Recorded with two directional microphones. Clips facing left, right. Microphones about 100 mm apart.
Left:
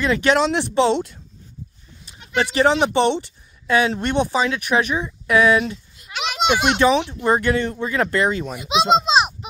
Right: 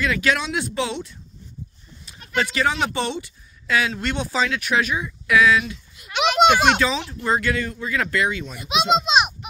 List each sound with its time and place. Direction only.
0.0 s speech: 30° left (ahead or behind)
2.0 s speech: 25° left (ahead or behind)
6.4 s a sound: 50° right (ahead or behind)
6.8 s a child's voice: 30° left (ahead or behind)